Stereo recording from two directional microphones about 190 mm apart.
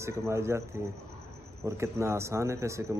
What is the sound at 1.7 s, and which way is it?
A man's voice, 15° right (ahead or behind).